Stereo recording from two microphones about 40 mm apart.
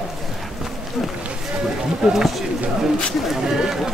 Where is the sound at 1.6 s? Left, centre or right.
Centre.